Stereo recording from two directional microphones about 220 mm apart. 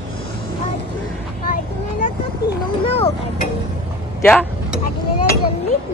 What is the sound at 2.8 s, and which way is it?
Vehicle, 25° left (ahead or behind).